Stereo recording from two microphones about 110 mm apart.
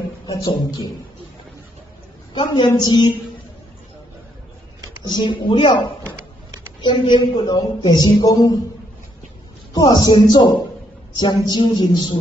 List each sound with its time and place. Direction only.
2.3 s a woman's voice: 45° left (ahead or behind)
5.0 s a woman's voice: 45° left (ahead or behind)
9.8 s a man's voice: 40° left (ahead or behind)